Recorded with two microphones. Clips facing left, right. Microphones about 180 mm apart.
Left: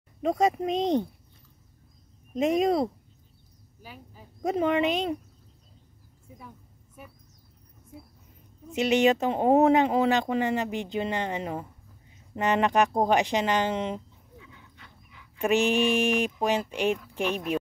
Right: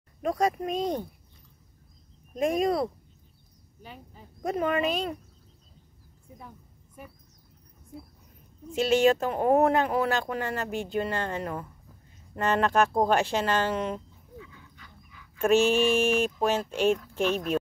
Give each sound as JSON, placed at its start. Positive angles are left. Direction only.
{"t": 0.2, "sound": "speech", "side_deg": 25}
{"t": 2.3, "sound": "speech", "side_deg": 20}
{"t": 3.8, "sound": "speech", "side_deg": 5}
{"t": 4.4, "sound": "speech", "side_deg": 25}
{"t": 8.7, "sound": "speech", "side_deg": 20}